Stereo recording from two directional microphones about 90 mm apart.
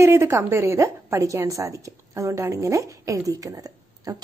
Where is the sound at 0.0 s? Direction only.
30° right (ahead or behind).